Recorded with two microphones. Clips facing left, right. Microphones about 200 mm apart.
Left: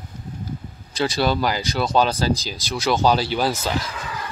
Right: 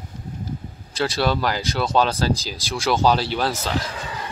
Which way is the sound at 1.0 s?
Centre (ahead or behind).